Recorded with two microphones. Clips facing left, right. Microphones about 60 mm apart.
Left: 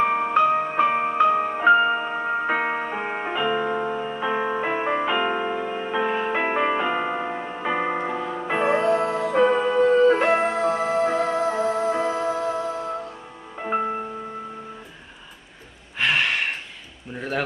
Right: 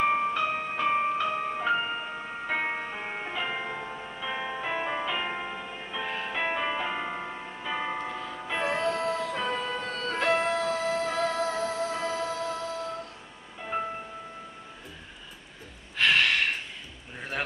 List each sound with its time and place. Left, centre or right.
0.3 s music: left
0.8 s music: left
1.1 s music: left
3.3 s music: left
4.1 s music: left
6.0 s music: left
13.6 s music: left
16.0 s gasp: centre